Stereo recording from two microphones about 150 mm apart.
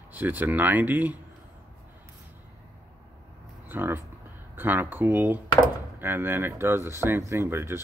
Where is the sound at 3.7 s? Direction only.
15° right (ahead or behind).